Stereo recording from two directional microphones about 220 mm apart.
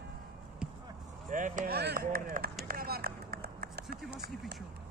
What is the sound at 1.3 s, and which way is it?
Speech, 35° right (ahead or behind).